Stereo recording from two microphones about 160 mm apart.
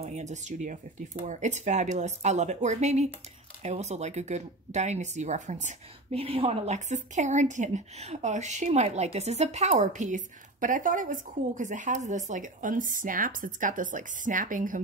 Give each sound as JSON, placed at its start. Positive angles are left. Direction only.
{"t": 0.0, "sound": "speech", "side_deg": -45}